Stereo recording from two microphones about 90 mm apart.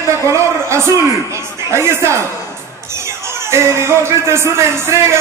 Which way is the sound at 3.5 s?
30° right (ahead or behind).